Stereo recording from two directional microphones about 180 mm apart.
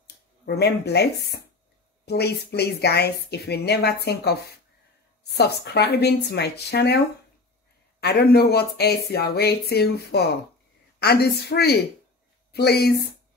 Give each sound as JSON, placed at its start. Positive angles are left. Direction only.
{"t": 0.6, "sound": "a woman's voice", "side_deg": 65}
{"t": 8.0, "sound": "a woman's voice", "side_deg": 65}